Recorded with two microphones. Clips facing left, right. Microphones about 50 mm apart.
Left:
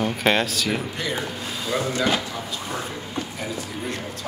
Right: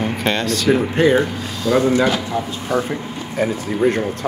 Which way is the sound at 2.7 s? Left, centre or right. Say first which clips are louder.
Right 12 dB; right.